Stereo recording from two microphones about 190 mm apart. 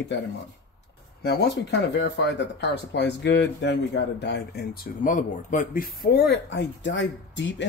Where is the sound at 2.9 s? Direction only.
65° left (ahead or behind).